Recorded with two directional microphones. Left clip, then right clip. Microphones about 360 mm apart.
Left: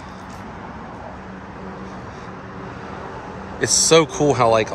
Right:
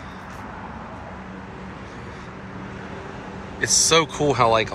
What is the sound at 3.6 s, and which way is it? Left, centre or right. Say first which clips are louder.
Speech: left 3 dB; centre.